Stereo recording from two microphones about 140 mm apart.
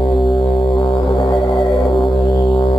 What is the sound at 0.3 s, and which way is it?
Music, 35° left (ahead or behind).